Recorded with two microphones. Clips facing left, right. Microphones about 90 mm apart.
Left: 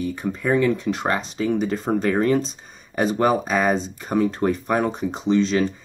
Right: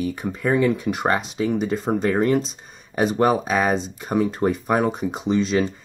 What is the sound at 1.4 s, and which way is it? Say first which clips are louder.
Speech: even; centre (ahead or behind).